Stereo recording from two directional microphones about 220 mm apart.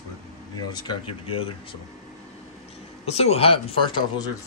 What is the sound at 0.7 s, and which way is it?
Speech, 20° left (ahead or behind).